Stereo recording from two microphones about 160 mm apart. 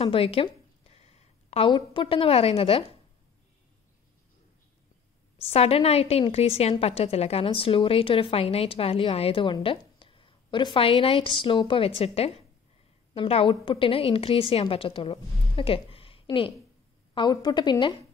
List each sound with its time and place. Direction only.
0.0 s a sound: 35° left (ahead or behind)
1.7 s a woman's voice: 30° left (ahead or behind)
5.4 s a woman's voice: 40° left (ahead or behind)